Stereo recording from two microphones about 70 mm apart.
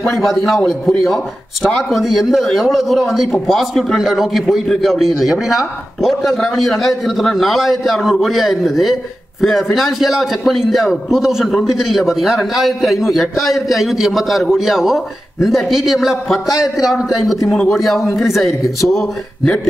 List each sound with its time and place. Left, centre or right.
0.1 s a man's voice: centre
16.5 s a man's voice: left
16.8 s a man's voice: centre